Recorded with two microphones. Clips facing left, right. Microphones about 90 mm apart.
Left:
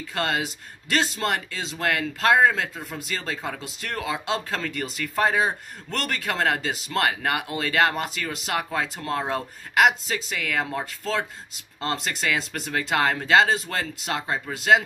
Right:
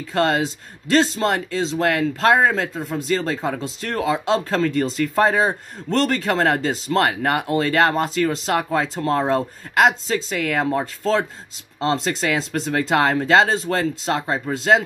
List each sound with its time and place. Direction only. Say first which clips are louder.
0.1 s speech: right 7 dB; 40° right (ahead or behind)